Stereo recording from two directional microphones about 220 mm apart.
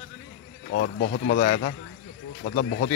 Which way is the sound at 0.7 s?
45° left (ahead or behind).